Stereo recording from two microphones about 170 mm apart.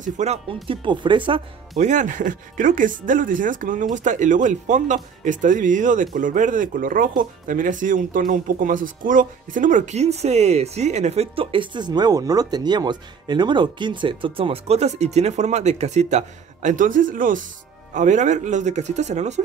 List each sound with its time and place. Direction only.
0.0 s speech: 40° right (ahead or behind)
0.7 s speech: 30° right (ahead or behind)
1.8 s speech: 45° right (ahead or behind)